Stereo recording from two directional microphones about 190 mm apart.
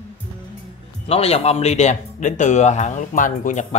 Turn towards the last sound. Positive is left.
turn(degrees=40)  # may be behind; listen again after turning